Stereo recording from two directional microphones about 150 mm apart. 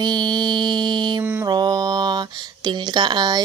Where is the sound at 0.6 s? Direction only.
30° right (ahead or behind).